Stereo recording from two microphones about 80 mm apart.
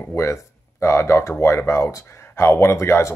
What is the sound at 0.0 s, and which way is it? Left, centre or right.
Speech, left.